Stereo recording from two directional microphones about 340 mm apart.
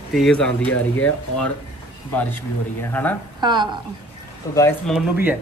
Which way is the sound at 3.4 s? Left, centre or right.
Centre.